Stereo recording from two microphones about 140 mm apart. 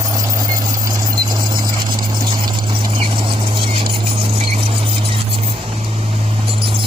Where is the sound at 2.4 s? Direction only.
40° right (ahead or behind).